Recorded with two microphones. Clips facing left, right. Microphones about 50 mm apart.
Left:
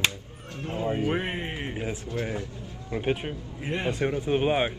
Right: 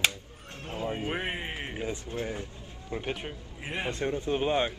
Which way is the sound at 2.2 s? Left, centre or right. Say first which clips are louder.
Left 4 dB; left.